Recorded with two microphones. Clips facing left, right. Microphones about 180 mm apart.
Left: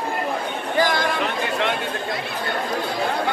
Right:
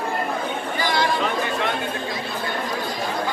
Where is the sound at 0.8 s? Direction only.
50° left (ahead or behind).